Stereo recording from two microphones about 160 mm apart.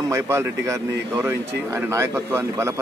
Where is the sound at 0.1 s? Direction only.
20° right (ahead or behind).